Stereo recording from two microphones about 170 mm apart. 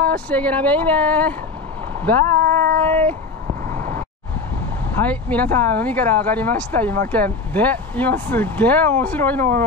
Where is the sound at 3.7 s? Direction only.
55° right (ahead or behind).